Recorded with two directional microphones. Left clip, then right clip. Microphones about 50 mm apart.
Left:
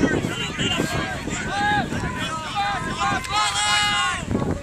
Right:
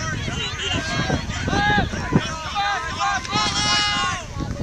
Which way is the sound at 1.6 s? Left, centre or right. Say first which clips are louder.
Right 1 dB; right.